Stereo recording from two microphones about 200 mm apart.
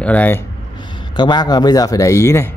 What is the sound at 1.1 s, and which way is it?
Speech, 20° left (ahead or behind).